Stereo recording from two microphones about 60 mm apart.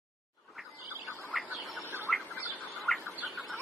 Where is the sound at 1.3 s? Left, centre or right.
Centre.